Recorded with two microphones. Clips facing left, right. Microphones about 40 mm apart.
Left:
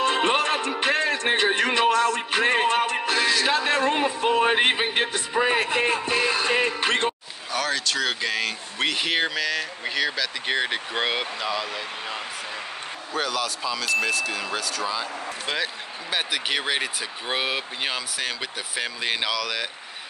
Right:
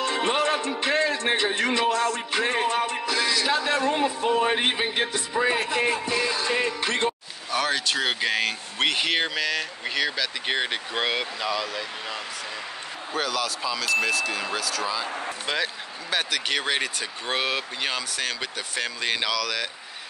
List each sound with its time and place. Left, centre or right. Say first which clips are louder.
0.0 s music: left 2 dB; left
3.1 s speech: left 2 dB; left
7.5 s speech: right 1 dB; centre